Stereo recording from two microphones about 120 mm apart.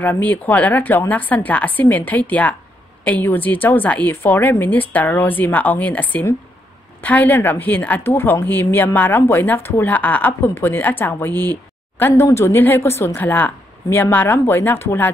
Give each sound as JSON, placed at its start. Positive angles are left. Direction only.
{"t": 0.0, "sound": "a woman's voice", "side_deg": 15}